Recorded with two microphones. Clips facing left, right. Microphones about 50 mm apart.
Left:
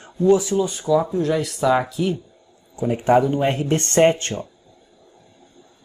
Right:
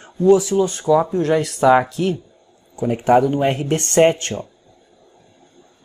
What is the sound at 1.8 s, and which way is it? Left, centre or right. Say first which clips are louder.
Speech: right 2 dB; centre.